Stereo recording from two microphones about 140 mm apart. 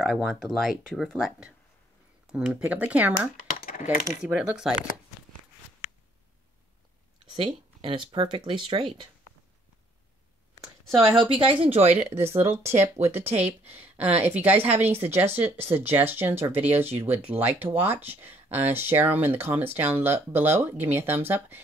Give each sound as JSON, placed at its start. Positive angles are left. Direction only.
{"t": 0.0, "sound": "speech", "side_deg": 5}
{"t": 3.3, "sound": "computer keyboard", "side_deg": 80}
{"t": 4.2, "sound": "speech", "side_deg": -5}
{"t": 7.2, "sound": "speech", "side_deg": -35}
{"t": 11.6, "sound": "speech", "side_deg": -45}
{"t": 11.9, "sound": "speech", "side_deg": -15}